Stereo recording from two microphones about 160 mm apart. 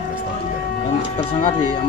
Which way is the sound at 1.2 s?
30° left (ahead or behind).